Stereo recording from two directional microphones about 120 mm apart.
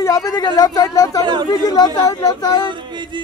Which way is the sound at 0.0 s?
30° left (ahead or behind).